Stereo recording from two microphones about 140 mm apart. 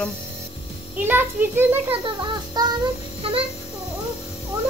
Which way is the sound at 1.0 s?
15° right (ahead or behind).